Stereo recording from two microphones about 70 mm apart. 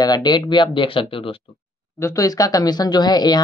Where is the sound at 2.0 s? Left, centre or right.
Left.